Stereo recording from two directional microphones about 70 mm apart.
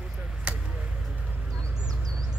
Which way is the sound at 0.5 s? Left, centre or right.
Centre.